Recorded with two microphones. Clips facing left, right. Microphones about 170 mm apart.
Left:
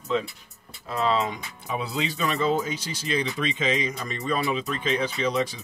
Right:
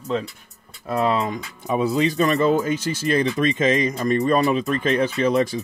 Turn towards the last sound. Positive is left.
turn(degrees=-50)  # may be behind; listen again after turning